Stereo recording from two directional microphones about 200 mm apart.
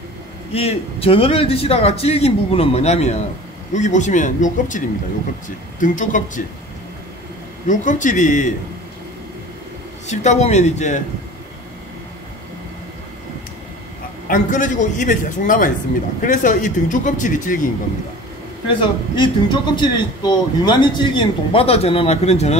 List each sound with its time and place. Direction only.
0.5 s a man's voice: 30° left (ahead or behind)
7.6 s a man's voice: 40° left (ahead or behind)
10.0 s a man's voice: 35° left (ahead or behind)
14.2 s a man's voice: 40° left (ahead or behind)
18.8 s a man's voice: 25° left (ahead or behind)